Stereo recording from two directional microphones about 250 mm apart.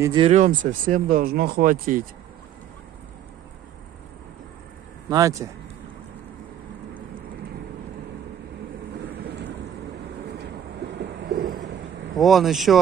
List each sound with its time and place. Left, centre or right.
0.0 s speech: centre
5.1 s speech: centre
11.0 s a sound: right
12.2 s speech: centre